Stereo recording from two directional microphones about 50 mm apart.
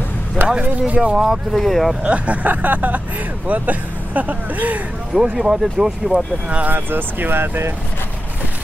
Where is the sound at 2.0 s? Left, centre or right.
Right.